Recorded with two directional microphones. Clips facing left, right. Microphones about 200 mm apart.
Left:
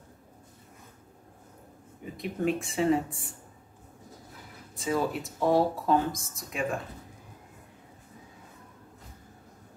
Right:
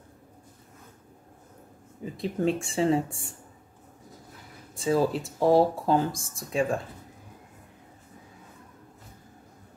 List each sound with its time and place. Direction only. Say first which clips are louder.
2.1 s speech: right 2 dB; 30° right (ahead or behind)
4.7 s speech: right 4 dB; 30° right (ahead or behind)